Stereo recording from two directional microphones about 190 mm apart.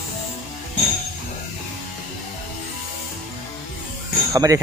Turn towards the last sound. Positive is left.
turn(degrees=-15)  # may be behind; listen again after turning